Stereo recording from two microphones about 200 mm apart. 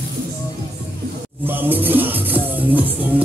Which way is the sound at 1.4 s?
10° right (ahead or behind).